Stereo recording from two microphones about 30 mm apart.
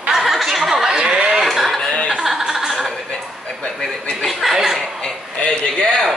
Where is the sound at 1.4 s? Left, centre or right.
Centre.